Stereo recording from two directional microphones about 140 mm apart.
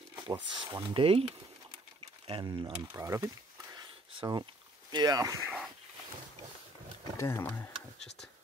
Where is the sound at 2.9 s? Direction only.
20° right (ahead or behind).